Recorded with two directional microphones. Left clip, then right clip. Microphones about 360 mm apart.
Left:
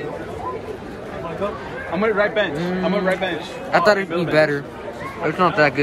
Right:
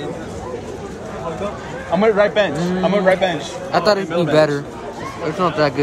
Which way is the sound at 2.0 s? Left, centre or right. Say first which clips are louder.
Right 4 dB; right.